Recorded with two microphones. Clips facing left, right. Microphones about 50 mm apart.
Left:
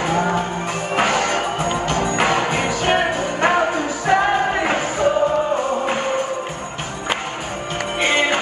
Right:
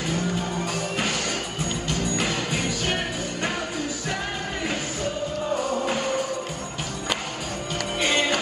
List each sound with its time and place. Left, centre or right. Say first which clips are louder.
0.0 s music: left 8 dB; left
5.5 s music: left 5 dB; left
8.0 s music: left 5 dB; left